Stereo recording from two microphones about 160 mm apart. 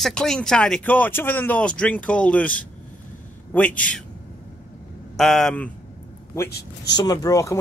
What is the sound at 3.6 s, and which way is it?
Speech, 10° left (ahead or behind).